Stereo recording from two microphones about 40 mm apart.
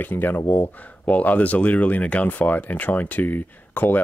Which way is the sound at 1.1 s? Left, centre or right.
Left.